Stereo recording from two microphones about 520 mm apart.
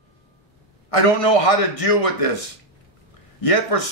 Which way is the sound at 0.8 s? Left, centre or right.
Left.